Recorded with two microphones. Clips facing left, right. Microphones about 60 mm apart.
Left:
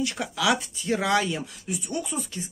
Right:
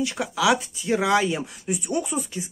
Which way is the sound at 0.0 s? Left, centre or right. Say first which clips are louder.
Right 3 dB; centre.